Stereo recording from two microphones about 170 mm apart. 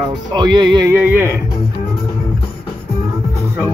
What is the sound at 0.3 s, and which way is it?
Speech, 25° right (ahead or behind).